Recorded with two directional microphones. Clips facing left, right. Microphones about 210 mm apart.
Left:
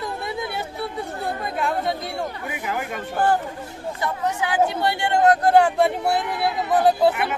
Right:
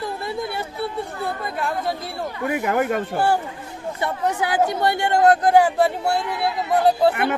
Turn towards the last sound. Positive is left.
turn(degrees=0)  # may be behind; listen again after turning